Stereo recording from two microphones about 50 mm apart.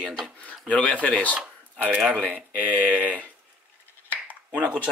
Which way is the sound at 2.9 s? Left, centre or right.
Right.